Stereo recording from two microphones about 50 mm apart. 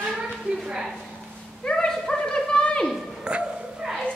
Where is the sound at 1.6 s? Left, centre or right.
Centre.